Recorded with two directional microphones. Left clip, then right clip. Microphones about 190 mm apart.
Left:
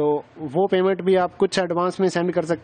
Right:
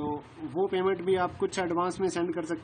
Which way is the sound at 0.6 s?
55° left (ahead or behind).